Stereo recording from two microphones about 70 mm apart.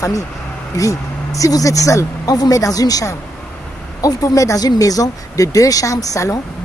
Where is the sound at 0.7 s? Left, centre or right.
Left.